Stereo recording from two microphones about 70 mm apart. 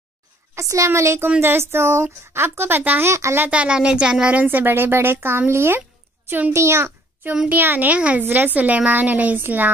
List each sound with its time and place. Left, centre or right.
0.6 s a woman's voice: right
3.1 s a woman's voice: right
3.4 s speech: centre
4.4 s a woman's voice: right
6.2 s a child's voice: right
6.5 s a woman's voice: right
7.4 s a woman's voice: right